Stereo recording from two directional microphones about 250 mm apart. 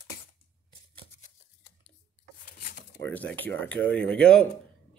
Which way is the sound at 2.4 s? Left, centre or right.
Left.